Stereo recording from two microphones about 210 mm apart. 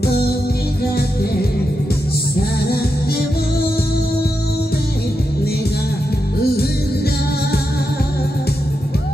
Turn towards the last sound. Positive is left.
turn(degrees=50)  # may be behind; listen again after turning